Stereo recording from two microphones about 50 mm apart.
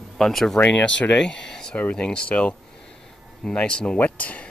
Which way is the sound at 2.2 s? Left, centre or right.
Left.